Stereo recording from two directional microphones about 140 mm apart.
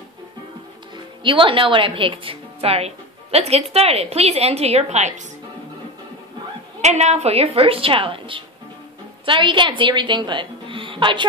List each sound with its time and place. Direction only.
1.2 s a woman's voice: 35° right (ahead or behind); by 5.2 s 55° right (ahead or behind)
6.8 s a woman's voice: 55° right (ahead or behind); by 11.2 s 35° right (ahead or behind)